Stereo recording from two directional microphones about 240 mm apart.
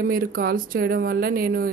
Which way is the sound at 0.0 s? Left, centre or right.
Right.